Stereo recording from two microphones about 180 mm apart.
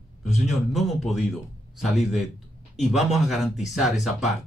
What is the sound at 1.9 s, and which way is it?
Speech, 40° left (ahead or behind).